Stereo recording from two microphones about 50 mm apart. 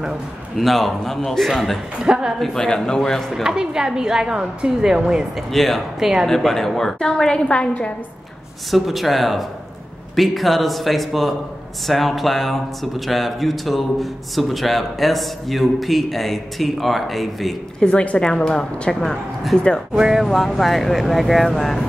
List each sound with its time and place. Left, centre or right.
0.6 s a man's voice: centre
2.0 s a woman's voice: centre
2.3 s speech: centre
3.4 s a woman's voice: centre
5.5 s a man's voice: centre
5.9 s a woman's voice: centre
6.2 s speech: centre
8.6 s a man's voice: centre
17.7 s a woman's voice: left
19.9 s a woman's voice: centre
20.2 s a man's voice: centre